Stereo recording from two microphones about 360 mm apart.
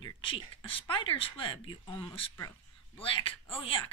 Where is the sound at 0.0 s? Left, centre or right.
Centre.